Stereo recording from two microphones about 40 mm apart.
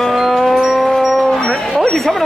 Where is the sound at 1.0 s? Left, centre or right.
Centre.